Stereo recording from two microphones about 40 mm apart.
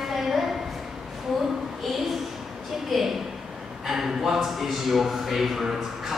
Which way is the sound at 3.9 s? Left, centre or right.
Centre.